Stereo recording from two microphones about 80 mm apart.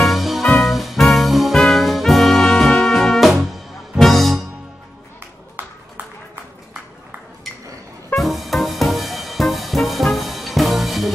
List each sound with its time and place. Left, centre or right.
0.0 s music: centre
5.6 s a sound: right
8.2 s music: centre